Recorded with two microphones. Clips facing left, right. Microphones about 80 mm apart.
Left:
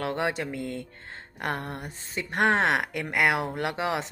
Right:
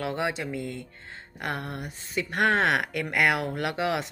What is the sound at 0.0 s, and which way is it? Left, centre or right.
Speech, left.